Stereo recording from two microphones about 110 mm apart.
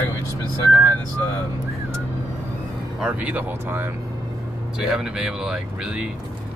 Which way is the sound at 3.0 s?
15° right (ahead or behind).